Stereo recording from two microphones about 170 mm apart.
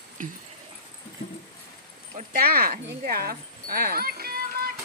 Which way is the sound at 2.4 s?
65° right (ahead or behind).